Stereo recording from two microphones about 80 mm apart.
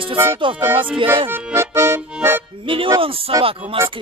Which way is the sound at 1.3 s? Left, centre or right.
Right.